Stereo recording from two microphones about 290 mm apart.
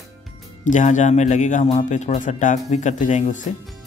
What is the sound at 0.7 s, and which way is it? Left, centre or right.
Speech, left.